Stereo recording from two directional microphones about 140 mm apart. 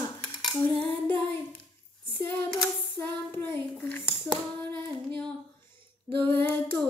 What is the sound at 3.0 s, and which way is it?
Child singing, 15° left (ahead or behind).